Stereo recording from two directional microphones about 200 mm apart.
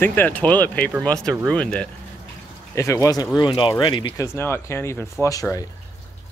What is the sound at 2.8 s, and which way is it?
Speech, 15° left (ahead or behind).